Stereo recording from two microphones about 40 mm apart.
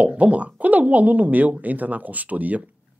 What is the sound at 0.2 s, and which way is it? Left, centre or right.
A woman's voice, right.